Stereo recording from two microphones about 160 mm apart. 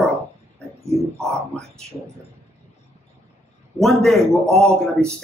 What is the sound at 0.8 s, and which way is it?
Speech, 15° right (ahead or behind).